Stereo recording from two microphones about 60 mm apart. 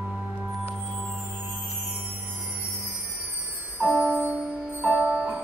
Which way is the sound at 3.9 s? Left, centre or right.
Right.